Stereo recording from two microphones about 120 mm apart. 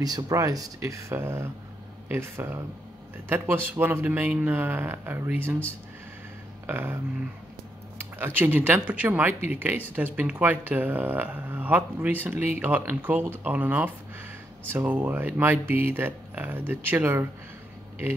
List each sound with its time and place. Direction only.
0.0 s speech: 30° right (ahead or behind)
6.7 s speech: 20° right (ahead or behind)
8.2 s speech: 15° right (ahead or behind)